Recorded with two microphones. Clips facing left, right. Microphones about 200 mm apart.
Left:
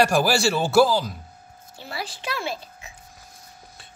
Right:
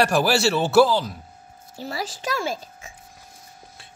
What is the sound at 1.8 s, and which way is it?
A child's voice, 40° right (ahead or behind).